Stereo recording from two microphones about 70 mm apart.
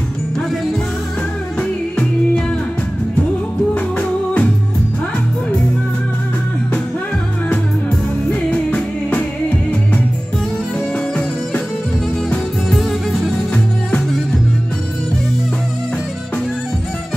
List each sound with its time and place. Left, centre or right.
1.6 s music: centre
4.0 s music: centre
8.3 s music: left
12.3 s music: centre